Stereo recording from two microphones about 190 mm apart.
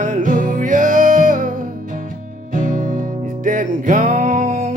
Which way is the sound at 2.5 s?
45° right (ahead or behind).